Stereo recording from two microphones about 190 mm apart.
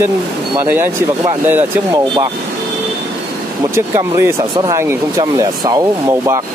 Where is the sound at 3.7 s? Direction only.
15° right (ahead or behind).